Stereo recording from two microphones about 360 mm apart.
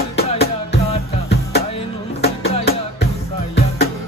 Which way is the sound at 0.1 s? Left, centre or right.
Left.